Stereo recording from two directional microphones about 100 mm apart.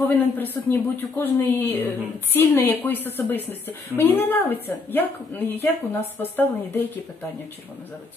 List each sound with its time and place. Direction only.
0.0 s a woman's voice: 20° left (ahead or behind)